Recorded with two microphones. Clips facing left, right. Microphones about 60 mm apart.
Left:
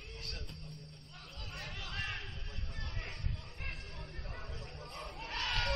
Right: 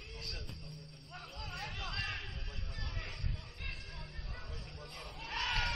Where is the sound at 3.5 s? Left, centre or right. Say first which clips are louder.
Left 2 dB; left.